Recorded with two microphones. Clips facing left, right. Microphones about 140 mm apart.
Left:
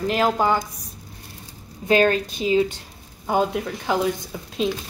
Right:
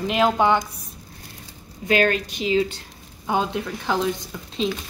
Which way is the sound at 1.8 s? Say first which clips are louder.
Left 2 dB; 30° left (ahead or behind).